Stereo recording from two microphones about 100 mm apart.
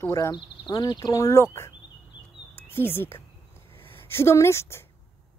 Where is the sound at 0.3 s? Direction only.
45° left (ahead or behind).